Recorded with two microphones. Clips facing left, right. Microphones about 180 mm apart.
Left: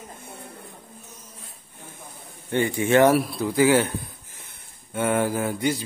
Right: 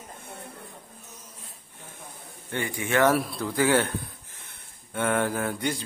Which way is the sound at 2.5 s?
25° left (ahead or behind).